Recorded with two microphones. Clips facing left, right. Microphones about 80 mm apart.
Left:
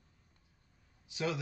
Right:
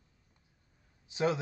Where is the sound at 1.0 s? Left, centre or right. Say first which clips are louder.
Right 6 dB; right.